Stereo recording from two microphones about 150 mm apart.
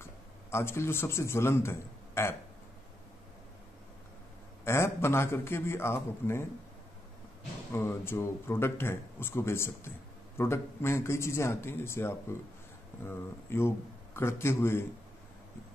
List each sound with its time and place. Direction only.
0.0 s a man's voice: 15° left (ahead or behind)
4.6 s a man's voice: 15° left (ahead or behind)
7.7 s a man's voice: 15° left (ahead or behind)